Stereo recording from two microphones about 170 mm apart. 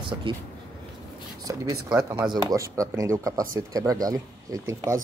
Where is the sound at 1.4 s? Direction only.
20° right (ahead or behind).